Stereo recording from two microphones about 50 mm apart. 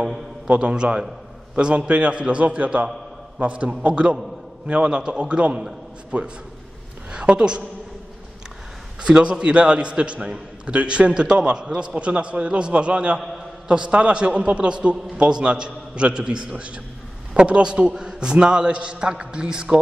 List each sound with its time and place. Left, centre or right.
0.5 s a man's voice: centre
9.0 s a man's voice: centre